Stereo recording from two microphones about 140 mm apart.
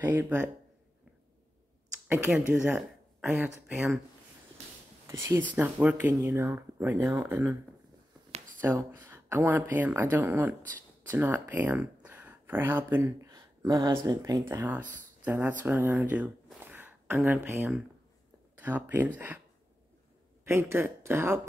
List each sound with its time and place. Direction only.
0.0 s speech: 15° right (ahead or behind)
2.0 s speech: 15° right (ahead or behind)
5.0 s speech: 20° right (ahead or behind)
6.1 s speech: 20° right (ahead or behind)
8.5 s speech: 15° right (ahead or behind)
16.6 s a sound: 15° right (ahead or behind)
18.6 s speech: 10° right (ahead or behind)
20.4 s speech: 20° right (ahead or behind)